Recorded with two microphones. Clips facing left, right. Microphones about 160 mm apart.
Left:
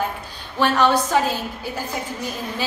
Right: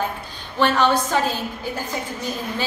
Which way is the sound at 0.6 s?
10° left (ahead or behind).